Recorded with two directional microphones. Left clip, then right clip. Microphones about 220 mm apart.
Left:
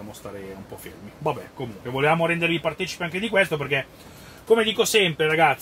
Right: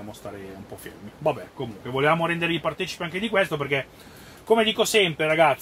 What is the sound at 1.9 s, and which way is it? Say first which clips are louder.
Speech: left 1 dB; 15° right (ahead or behind).